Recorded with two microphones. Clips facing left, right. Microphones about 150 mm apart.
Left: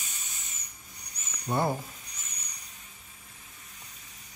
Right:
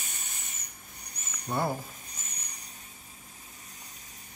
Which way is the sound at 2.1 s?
50° right (ahead or behind).